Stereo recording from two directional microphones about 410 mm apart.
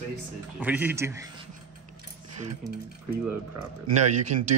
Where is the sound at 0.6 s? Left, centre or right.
Centre.